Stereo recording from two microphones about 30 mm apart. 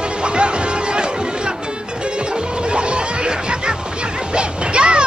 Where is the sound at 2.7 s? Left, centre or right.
Right.